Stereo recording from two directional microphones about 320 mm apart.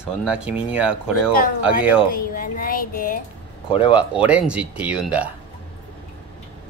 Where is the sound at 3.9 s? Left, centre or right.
Centre.